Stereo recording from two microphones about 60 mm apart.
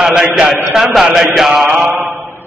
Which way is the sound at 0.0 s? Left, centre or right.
Centre.